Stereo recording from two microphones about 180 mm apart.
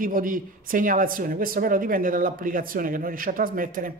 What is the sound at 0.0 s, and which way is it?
Speech, 50° right (ahead or behind).